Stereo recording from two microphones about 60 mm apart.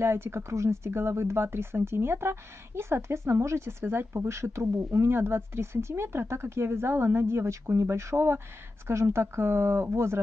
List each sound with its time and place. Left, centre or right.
0.0 s speech: right